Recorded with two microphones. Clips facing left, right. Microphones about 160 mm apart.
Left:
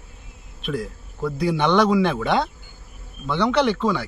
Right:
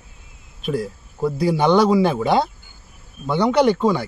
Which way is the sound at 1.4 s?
35° right (ahead or behind).